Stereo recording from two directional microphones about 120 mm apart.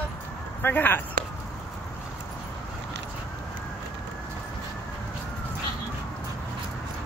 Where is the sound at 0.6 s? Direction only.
15° left (ahead or behind).